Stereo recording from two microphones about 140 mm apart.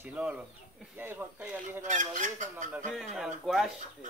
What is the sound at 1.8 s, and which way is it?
Speech, 65° right (ahead or behind).